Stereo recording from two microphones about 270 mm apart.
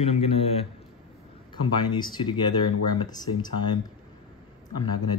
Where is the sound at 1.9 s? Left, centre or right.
Centre.